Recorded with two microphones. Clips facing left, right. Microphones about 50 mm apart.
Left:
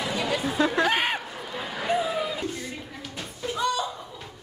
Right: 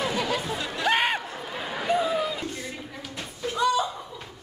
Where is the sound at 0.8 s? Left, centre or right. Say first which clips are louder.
Right 1 dB; centre.